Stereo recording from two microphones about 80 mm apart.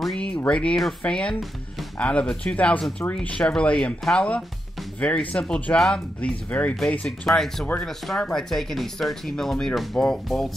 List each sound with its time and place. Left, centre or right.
0.0 s a sound: centre
0.5 s speech: centre
7.1 s speech: centre